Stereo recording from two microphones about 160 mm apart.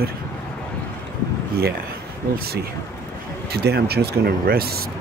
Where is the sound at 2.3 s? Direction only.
75° right (ahead or behind).